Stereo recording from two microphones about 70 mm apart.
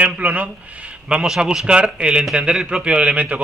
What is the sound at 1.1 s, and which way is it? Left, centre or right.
Speech, centre.